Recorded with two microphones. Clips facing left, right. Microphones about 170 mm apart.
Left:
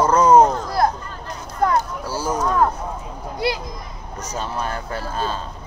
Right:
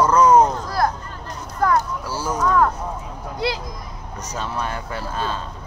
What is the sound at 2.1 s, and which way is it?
Speech, 15° left (ahead or behind).